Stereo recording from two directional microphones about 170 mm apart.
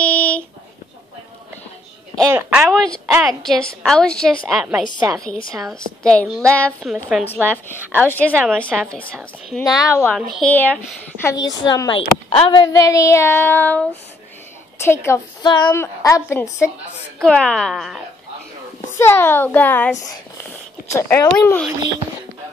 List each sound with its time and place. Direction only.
0.0 s a sound: 5° left (ahead or behind)
2.2 s a woman's voice: 15° right (ahead or behind)
2.7 s a woman's voice: 5° left (ahead or behind)
6.0 s a woman's voice: 5° left (ahead or behind)
7.4 s a woman's voice: 10° left (ahead or behind)
9.8 s speech: 15° left (ahead or behind)
11.4 s a woman's voice: 20° left (ahead or behind)
15.4 s a woman's voice: 25° left (ahead or behind)
15.7 s speech: 15° left (ahead or behind)
17.2 s a woman's voice: 5° left (ahead or behind)
18.9 s speech: 15° left (ahead or behind)